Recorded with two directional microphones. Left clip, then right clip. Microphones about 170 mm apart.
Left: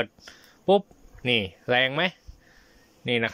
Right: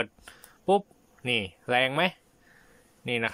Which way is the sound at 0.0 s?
Centre (ahead or behind).